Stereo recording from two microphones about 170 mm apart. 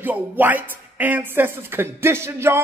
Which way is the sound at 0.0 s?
10° right (ahead or behind).